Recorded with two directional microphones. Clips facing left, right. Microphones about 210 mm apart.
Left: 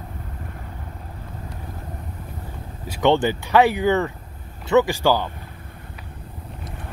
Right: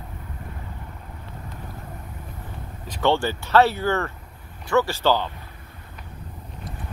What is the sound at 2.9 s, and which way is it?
Speech, 15° left (ahead or behind).